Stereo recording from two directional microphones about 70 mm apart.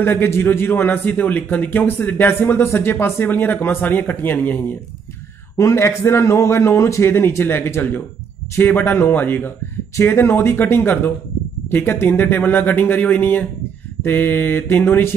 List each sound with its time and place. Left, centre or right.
0.0 s a man's voice: left
5.6 s a man's voice: left